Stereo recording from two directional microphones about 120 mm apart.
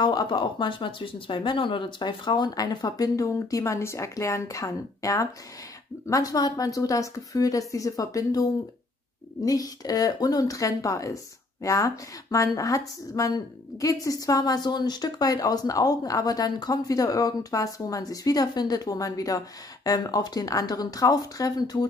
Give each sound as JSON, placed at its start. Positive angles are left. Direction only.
{"t": 0.0, "sound": "a woman's voice", "side_deg": 40}